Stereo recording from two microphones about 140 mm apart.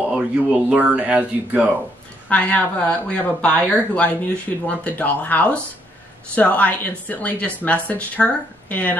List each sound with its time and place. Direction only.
0.1 s speech: 5° right (ahead or behind)
2.2 s speech: 10° left (ahead or behind)